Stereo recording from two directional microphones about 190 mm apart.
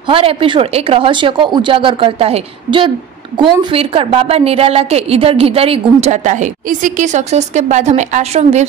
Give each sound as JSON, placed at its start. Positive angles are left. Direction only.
{"t": 0.1, "sound": "a woman's voice", "side_deg": -30}